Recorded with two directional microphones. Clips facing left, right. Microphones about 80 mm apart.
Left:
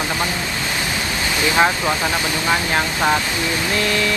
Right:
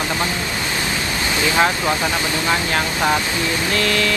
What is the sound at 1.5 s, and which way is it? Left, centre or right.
Speech, centre.